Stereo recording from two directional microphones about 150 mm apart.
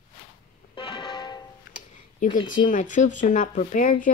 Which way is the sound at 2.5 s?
60° left (ahead or behind).